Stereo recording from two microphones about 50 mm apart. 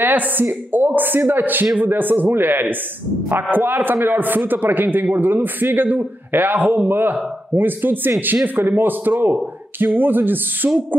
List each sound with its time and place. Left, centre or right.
0.0 s a man's voice: right